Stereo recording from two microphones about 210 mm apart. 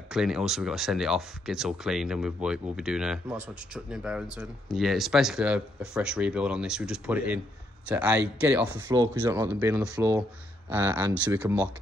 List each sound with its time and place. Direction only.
0.1 s a man's voice: 5° right (ahead or behind)